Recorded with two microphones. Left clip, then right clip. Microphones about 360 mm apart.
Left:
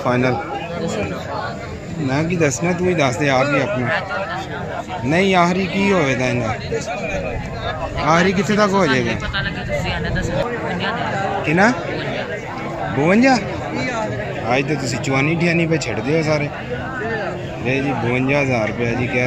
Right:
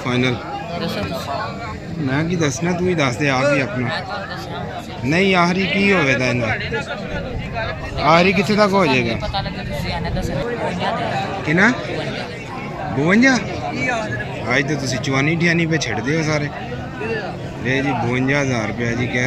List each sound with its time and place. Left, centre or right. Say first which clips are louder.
0.0 s speech: left 2 dB; centre
2.0 s speech: left 2 dB; centre
5.1 s speech: left 1 dB; centre
8.1 s speech: right 2 dB; centre
11.4 s speech: even; centre
13.0 s speech: left 1 dB; centre
13.7 s a sound: right 2 dB; right
14.5 s speech: even; centre
17.6 s speech: even; centre